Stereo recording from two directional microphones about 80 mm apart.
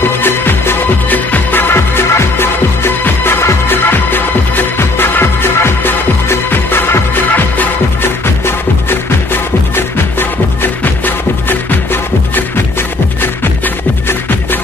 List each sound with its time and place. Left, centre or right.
0.2 s music: left
9.8 s music: left